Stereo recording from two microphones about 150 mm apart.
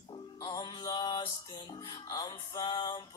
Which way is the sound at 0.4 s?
25° left (ahead or behind).